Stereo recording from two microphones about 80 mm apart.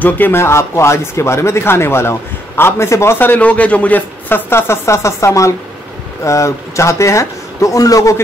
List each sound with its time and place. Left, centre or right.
0.0 s speech: left